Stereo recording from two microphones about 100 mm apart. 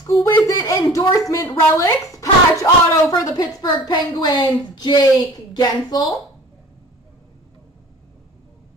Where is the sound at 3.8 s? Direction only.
45° left (ahead or behind).